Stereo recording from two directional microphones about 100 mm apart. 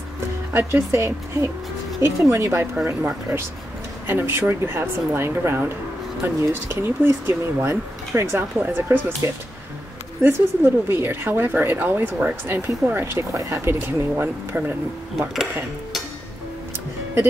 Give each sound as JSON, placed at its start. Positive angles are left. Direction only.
{"t": 0.5, "sound": "a woman's voice", "side_deg": -20}